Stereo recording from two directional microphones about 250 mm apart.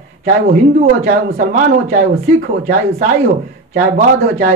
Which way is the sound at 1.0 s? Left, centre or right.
Right.